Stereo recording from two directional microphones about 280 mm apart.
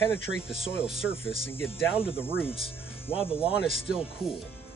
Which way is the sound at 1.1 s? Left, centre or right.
Centre.